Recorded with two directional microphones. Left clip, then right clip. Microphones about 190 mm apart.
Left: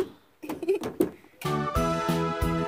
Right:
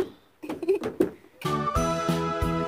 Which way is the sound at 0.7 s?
50° left (ahead or behind).